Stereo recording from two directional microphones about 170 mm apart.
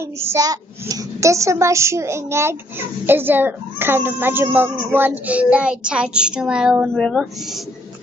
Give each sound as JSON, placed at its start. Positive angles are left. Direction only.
{"t": 0.2, "sound": "speech", "side_deg": -20}